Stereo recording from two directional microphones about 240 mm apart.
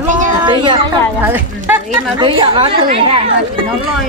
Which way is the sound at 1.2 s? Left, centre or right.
Centre.